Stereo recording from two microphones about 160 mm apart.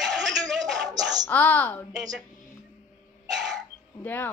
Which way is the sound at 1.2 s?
10° left (ahead or behind).